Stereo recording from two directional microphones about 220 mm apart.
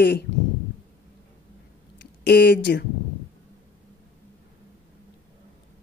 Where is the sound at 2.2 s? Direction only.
50° left (ahead or behind).